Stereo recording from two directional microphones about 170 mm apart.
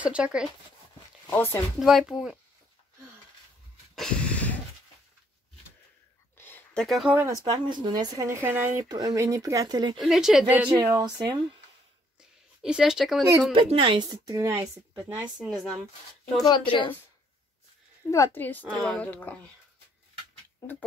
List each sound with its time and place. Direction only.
0.0 s speech: 5° right (ahead or behind)
1.3 s speech: 15° left (ahead or behind)
1.8 s speech: centre (ahead or behind)
3.9 s a sound: 5° left (ahead or behind)
6.3 s a sound: 10° left (ahead or behind)
7.2 s speech: 15° right (ahead or behind)
7.6 s speech: 25° right (ahead or behind)
9.9 s speech: centre (ahead or behind)
10.8 s speech: 20° right (ahead or behind)
12.2 s a sound: 5° right (ahead or behind)
13.5 s speech: 30° right (ahead or behind)
15.3 s speech: centre (ahead or behind)
16.4 s a woman's voice: 30° left (ahead or behind)
18.1 s speech: 15° left (ahead or behind)